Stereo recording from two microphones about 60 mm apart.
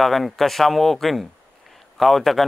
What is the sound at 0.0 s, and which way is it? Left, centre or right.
Speech, centre.